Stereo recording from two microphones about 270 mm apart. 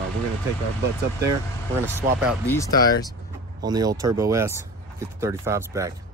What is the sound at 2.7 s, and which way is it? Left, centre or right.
Speech, left.